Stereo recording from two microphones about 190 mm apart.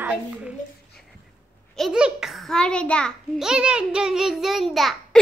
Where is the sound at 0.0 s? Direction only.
5° right (ahead or behind).